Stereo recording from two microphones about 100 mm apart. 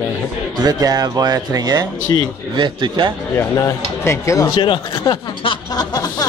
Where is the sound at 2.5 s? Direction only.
50° right (ahead or behind).